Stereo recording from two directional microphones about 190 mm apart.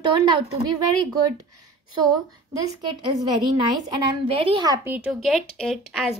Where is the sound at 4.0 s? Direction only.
25° right (ahead or behind).